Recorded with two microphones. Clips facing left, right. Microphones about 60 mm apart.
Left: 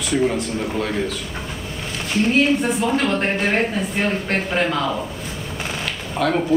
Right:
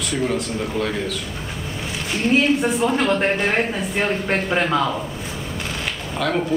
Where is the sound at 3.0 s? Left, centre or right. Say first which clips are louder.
Right 1 dB; centre.